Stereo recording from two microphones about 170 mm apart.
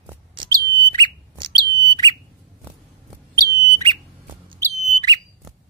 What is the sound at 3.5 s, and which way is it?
Bird, 20° right (ahead or behind).